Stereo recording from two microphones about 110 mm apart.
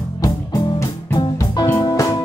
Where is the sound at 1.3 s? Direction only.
35° left (ahead or behind).